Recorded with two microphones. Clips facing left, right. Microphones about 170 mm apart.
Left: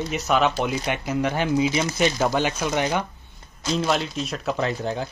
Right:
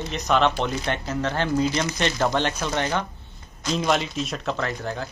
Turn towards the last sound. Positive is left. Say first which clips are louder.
# left 3 dB
turn(degrees=20)  # may be behind; listen again after turning